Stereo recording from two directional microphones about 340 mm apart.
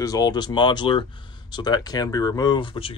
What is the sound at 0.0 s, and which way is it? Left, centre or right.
Speech, centre.